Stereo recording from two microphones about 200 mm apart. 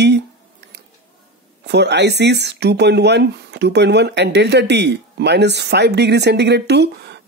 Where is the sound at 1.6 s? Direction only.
60° right (ahead or behind).